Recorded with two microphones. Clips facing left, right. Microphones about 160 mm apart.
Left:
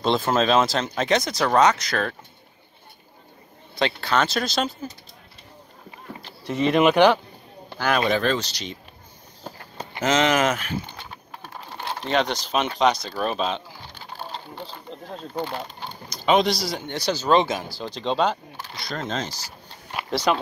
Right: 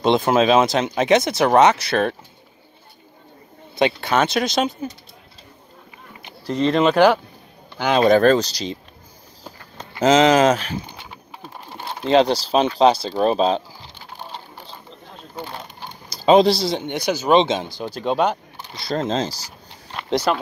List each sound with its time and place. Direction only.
0.0 s speech: 20° right (ahead or behind)
0.9 s speech: 20° right (ahead or behind)
3.7 s speech: 20° right (ahead or behind)
4.3 s speech: centre (ahead or behind)
6.4 s speech: 5° left (ahead or behind)
8.0 s speech: 45° right (ahead or behind)
9.9 s speech: 30° right (ahead or behind)
10.9 s a sound: 10° right (ahead or behind)
12.0 s speech: 30° right (ahead or behind)
15.4 s speech: 10° right (ahead or behind)
16.1 s speech: 35° right (ahead or behind)
17.8 s speech: 10° right (ahead or behind)
18.9 s speech: 30° right (ahead or behind)
20.3 s speech: 5° left (ahead or behind)